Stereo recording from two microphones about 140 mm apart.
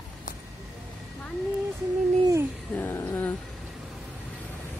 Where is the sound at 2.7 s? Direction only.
10° left (ahead or behind).